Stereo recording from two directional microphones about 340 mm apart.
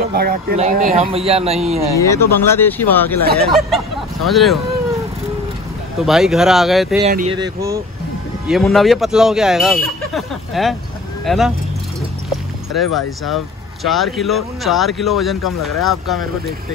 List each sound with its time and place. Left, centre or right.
0.1 s a man's voice: right
2.0 s speech: centre
5.9 s speech: centre
7.0 s a man's voice: centre
8.5 s speech: centre
12.3 s boat: centre
13.8 s speech: centre